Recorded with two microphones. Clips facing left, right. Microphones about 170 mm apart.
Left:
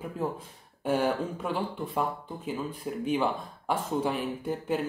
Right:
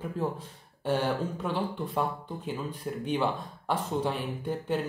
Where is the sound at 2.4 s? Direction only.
5° left (ahead or behind).